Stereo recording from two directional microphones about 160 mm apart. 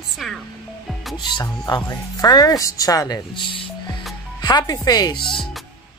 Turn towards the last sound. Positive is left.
turn(degrees=30)  # may be behind; listen again after turning